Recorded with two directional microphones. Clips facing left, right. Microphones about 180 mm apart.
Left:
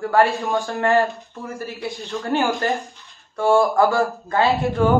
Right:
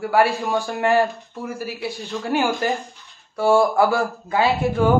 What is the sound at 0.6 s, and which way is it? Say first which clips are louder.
Speech: even; 15° right (ahead or behind).